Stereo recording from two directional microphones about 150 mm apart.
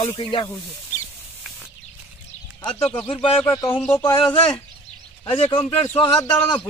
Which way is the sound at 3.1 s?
20° left (ahead or behind).